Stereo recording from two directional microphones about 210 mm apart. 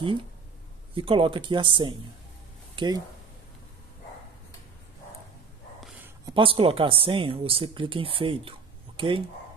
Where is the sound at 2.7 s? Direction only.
20° right (ahead or behind).